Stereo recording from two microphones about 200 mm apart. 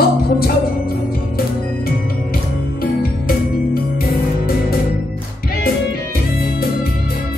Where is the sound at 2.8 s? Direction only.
50° left (ahead or behind).